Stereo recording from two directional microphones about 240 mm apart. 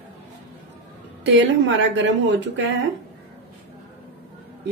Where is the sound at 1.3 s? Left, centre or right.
Right.